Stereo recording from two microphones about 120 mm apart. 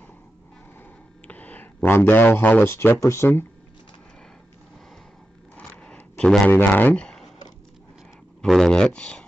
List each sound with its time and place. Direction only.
1.2 s a sound: 15° left (ahead or behind)
1.8 s speech: 20° left (ahead or behind)
5.6 s zipper: 10° left (ahead or behind)
6.5 s speech: 15° left (ahead or behind)
8.4 s speech: 5° left (ahead or behind)